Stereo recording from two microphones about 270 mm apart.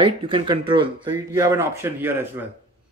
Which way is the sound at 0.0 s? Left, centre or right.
Centre.